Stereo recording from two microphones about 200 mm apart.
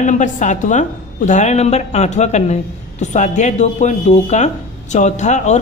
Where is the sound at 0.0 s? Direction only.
40° left (ahead or behind).